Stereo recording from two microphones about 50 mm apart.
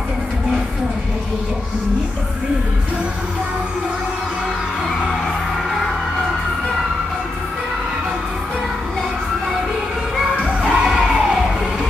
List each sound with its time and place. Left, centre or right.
10.4 s music: centre